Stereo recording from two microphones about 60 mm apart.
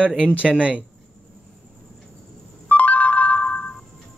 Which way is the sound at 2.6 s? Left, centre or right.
Left.